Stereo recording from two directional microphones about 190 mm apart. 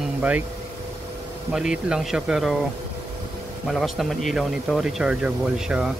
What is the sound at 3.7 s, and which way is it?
Speech, centre (ahead or behind).